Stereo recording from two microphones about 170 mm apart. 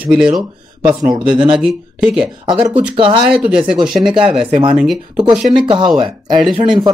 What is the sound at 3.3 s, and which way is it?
Speech, 5° right (ahead or behind).